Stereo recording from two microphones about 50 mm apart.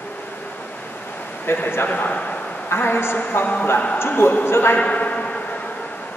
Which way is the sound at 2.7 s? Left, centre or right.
Left.